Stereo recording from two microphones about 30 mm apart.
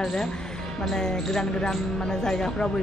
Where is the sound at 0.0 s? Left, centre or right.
Centre.